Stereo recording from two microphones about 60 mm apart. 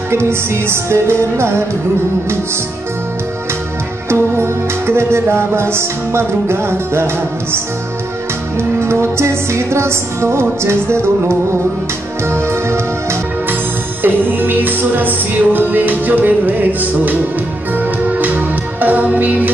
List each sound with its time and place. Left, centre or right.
0.1 s music: right
4.1 s music: right
8.5 s music: right
14.0 s music: right